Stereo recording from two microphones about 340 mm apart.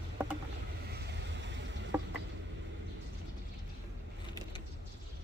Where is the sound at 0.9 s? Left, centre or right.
Right.